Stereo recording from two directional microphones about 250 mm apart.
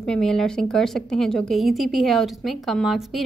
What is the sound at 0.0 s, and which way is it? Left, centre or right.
A woman's voice, centre.